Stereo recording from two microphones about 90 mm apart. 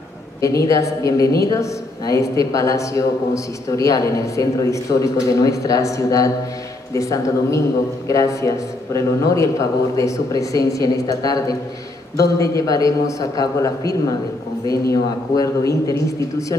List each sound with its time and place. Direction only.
0.4 s a man's voice: 40° left (ahead or behind)
14.7 s a man's voice: 40° left (ahead or behind)